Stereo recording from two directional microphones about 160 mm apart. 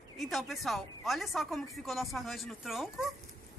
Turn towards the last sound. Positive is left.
turn(degrees=0)  # may be behind; listen again after turning